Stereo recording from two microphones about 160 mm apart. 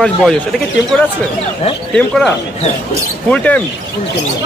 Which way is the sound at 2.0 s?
5° left (ahead or behind).